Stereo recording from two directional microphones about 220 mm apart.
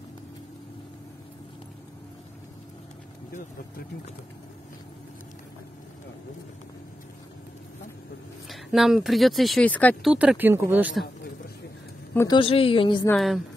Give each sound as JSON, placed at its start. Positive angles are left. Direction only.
{"t": 8.5, "sound": "speech", "side_deg": 0}
{"t": 10.1, "sound": "speech", "side_deg": -5}
{"t": 12.1, "sound": "a woman's voice", "side_deg": 10}
{"t": 12.4, "sound": "a woman's voice", "side_deg": 25}
{"t": 13.1, "sound": "speech", "side_deg": 0}